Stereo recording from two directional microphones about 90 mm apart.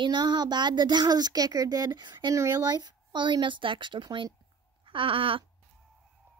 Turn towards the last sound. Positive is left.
turn(degrees=-80)